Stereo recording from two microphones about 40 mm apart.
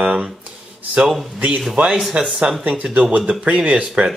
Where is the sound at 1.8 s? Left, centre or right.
Right.